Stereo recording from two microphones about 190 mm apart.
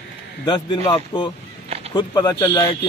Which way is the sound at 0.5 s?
25° left (ahead or behind).